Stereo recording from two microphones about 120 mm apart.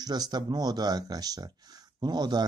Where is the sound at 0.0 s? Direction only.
35° right (ahead or behind).